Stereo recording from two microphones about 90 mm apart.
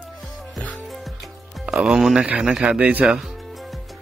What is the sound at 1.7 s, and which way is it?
Speech, 5° right (ahead or behind).